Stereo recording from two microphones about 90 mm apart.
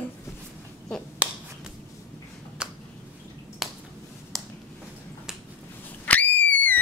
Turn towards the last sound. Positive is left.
turn(degrees=20)  # may be behind; listen again after turning